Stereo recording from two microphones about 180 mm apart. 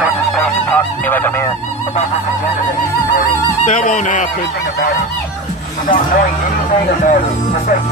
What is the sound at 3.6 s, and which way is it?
Speech, 45° left (ahead or behind).